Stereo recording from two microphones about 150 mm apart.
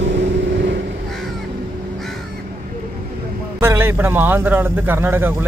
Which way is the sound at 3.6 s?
15° right (ahead or behind).